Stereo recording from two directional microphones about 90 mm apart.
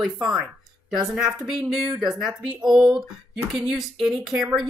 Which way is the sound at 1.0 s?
5° right (ahead or behind).